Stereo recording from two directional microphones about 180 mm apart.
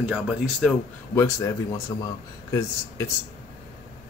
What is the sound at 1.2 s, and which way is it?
Speech, 15° left (ahead or behind).